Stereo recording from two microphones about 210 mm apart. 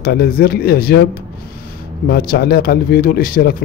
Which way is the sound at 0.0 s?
45° left (ahead or behind).